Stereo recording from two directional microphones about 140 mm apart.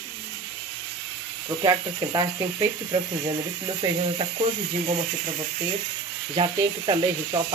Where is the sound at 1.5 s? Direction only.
25° right (ahead or behind).